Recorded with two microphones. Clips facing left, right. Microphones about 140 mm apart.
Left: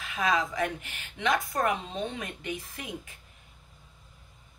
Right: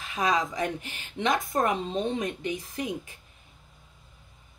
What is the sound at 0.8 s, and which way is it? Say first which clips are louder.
Speech: right 2 dB; 40° right (ahead or behind).